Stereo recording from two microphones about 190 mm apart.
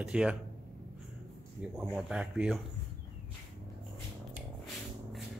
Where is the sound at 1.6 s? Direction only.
10° right (ahead or behind).